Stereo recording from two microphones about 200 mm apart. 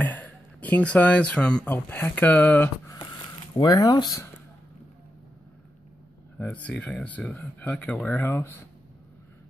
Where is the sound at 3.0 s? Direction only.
20° left (ahead or behind).